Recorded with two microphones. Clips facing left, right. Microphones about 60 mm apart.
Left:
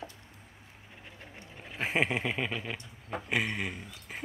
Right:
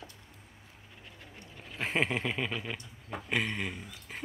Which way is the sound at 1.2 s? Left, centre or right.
Left.